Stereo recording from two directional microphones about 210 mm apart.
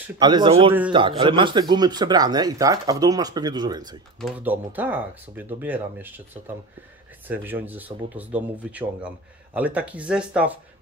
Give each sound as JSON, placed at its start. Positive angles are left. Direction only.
{"t": 0.2, "sound": "speech", "side_deg": -20}
{"t": 4.2, "sound": "speech", "side_deg": -10}